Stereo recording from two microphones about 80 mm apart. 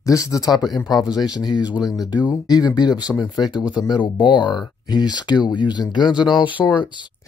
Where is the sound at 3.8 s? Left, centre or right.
Left.